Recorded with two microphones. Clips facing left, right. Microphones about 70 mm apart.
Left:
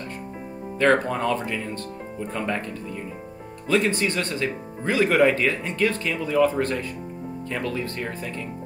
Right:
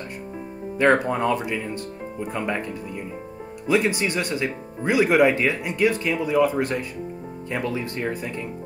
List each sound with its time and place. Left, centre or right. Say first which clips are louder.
0.7 s speech: right 1 dB; centre